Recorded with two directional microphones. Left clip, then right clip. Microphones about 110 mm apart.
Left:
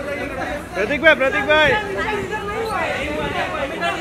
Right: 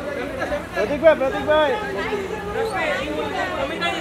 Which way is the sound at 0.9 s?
45° left (ahead or behind).